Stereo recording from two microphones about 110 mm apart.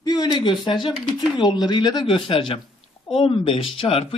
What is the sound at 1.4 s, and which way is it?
A man's voice, 40° left (ahead or behind).